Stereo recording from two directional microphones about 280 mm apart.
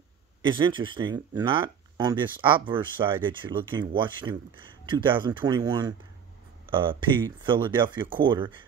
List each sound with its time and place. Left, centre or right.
0.4 s speech: centre